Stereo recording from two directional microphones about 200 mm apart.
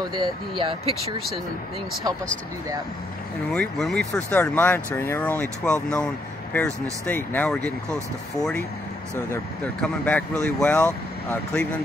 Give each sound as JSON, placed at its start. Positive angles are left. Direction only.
{"t": 0.1, "sound": "speech", "side_deg": -25}
{"t": 3.5, "sound": "speech", "side_deg": 0}